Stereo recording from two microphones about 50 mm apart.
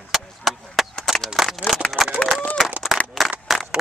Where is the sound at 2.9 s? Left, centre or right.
Centre.